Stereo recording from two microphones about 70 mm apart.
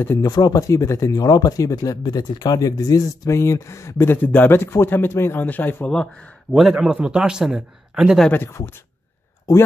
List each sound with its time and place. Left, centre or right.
0.2 s speech: left
3.3 s speech: left
4.2 s speech: left
6.5 s a man's voice: centre
8.5 s speech: left